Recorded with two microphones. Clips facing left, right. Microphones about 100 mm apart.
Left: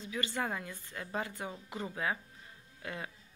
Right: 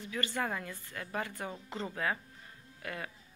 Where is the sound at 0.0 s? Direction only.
15° left (ahead or behind).